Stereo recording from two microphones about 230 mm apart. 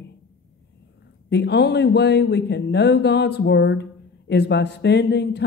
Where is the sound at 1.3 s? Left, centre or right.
Left.